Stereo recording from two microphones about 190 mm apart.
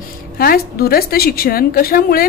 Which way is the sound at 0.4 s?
50° left (ahead or behind).